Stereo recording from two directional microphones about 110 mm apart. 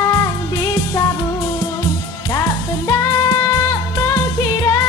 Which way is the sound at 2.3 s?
30° left (ahead or behind).